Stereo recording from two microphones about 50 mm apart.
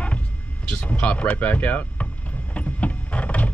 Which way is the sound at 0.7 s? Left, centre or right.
Left.